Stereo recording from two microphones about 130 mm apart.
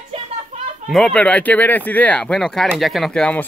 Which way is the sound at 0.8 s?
5° left (ahead or behind).